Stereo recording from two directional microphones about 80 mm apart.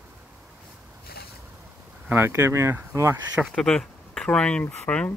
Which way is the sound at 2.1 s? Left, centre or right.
Right.